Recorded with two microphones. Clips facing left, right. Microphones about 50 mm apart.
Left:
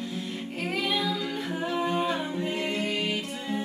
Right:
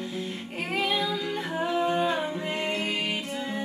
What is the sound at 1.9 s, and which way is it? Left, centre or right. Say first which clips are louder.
Music: right 1 dB; centre.